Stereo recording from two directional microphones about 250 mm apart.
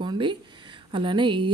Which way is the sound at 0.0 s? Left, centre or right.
Centre.